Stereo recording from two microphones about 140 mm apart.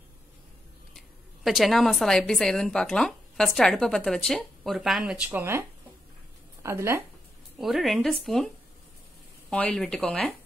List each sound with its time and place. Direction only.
0.9 s a woman's voice: centre (ahead or behind)
5.4 s speech: 20° right (ahead or behind)
7.5 s speech: centre (ahead or behind)
9.5 s speech: 10° left (ahead or behind)